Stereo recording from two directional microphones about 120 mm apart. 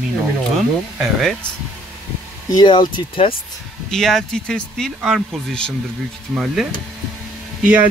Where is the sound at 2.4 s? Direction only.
35° left (ahead or behind).